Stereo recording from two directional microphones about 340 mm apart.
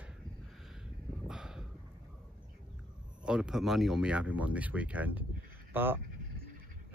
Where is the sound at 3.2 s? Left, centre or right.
Centre.